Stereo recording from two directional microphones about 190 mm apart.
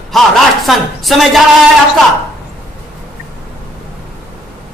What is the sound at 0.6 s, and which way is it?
Speech, centre (ahead or behind).